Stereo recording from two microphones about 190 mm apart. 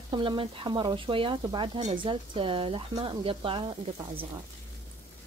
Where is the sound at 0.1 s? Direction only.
25° right (ahead or behind).